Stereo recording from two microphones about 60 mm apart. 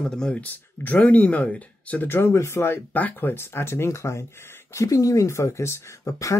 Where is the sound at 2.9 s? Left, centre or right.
Left.